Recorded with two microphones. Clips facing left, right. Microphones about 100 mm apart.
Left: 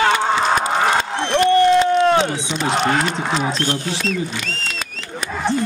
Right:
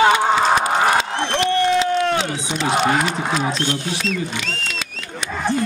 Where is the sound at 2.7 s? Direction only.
5° right (ahead or behind).